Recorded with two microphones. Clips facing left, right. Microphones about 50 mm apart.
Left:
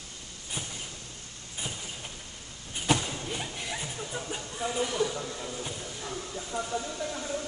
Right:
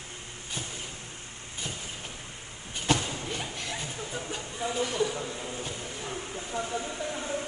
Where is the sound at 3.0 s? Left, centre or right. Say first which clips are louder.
Right 1 dB; right.